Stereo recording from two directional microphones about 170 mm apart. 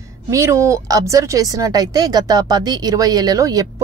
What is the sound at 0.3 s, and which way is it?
Speech, 15° right (ahead or behind).